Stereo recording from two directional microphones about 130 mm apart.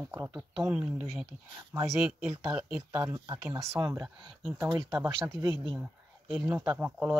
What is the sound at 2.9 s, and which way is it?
Speech, 20° right (ahead or behind).